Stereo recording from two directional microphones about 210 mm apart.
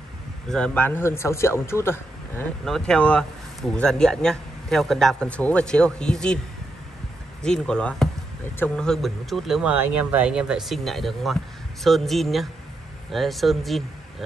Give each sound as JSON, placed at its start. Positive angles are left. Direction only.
{"t": 0.5, "sound": "speech", "side_deg": 5}
{"t": 7.4, "sound": "speech", "side_deg": 5}